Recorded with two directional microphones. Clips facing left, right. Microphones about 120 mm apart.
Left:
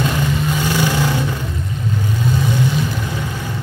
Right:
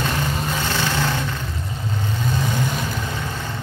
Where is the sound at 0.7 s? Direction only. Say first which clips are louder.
Left 6 dB; 15° left (ahead or behind).